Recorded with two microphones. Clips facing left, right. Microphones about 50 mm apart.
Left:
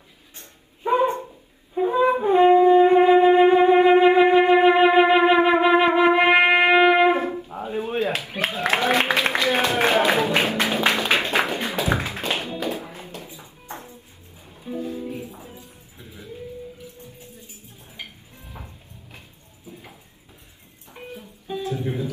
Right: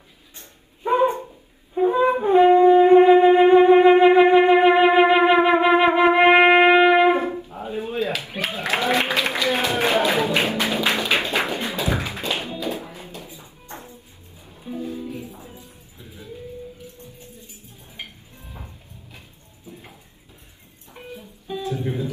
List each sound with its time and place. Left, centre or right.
1.8 s wind instrument: centre
7.9 s a sound: left
11.0 s music: left
11.5 s tap: left
12.5 s music: left
21.5 s music: left